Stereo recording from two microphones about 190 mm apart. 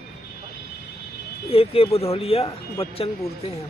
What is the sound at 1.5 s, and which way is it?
Speech, 30° left (ahead or behind).